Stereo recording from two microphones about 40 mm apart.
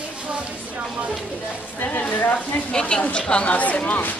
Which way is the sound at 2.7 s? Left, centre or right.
Left.